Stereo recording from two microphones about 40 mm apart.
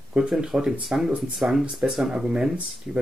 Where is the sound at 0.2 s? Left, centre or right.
Right.